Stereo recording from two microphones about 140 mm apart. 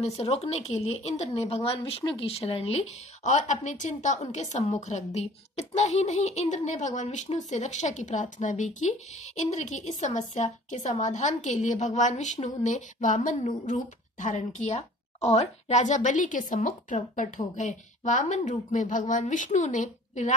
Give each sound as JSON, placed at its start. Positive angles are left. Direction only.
{"t": 0.0, "sound": "a woman's voice", "side_deg": 45}